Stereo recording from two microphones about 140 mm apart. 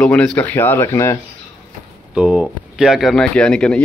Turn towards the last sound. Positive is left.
turn(degrees=5)  # may be behind; listen again after turning